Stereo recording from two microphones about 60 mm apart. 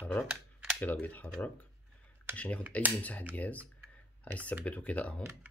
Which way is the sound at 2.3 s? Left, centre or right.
Left.